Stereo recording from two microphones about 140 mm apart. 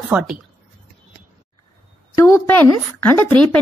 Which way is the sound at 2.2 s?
20° left (ahead or behind).